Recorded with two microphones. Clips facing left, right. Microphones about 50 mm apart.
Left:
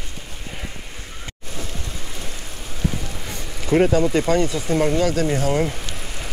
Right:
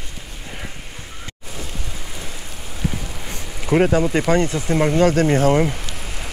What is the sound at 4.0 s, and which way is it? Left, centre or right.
Speech, centre.